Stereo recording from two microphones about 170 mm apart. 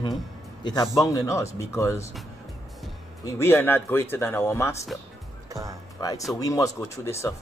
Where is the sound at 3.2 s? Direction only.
15° left (ahead or behind).